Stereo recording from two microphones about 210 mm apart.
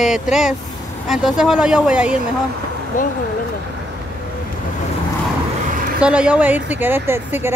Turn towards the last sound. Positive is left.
turn(degrees=-10)  # may be behind; listen again after turning